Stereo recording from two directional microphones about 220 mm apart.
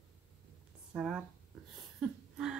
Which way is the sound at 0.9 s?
5° right (ahead or behind).